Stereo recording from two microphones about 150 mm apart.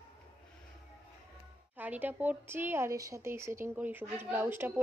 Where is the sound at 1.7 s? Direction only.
10° right (ahead or behind).